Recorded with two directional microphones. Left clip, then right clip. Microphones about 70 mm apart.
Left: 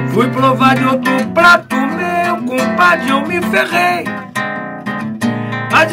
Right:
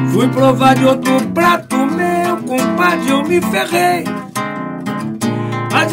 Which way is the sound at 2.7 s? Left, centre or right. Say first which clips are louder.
Left 4 dB; centre.